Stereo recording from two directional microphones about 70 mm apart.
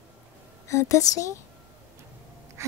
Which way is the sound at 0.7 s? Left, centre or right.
Left.